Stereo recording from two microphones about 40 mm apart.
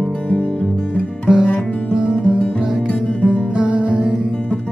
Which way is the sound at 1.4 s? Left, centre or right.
Left.